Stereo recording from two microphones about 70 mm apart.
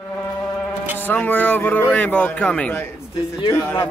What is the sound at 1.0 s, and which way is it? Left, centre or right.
Music, left.